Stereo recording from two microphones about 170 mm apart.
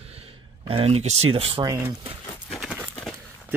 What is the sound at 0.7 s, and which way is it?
Speech, 35° right (ahead or behind).